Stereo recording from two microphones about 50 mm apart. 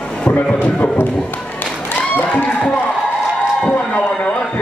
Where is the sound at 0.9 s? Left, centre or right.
Left.